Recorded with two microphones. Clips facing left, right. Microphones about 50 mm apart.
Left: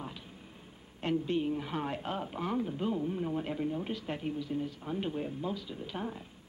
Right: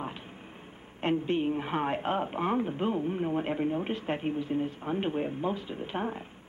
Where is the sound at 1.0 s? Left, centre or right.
Right.